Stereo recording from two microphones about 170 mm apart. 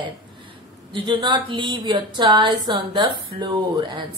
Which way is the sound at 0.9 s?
30° right (ahead or behind).